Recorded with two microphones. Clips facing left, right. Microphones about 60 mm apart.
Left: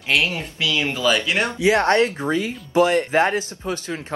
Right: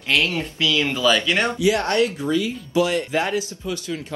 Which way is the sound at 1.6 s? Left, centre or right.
Left.